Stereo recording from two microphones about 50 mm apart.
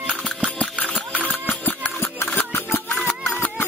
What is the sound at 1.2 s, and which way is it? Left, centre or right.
Music, left.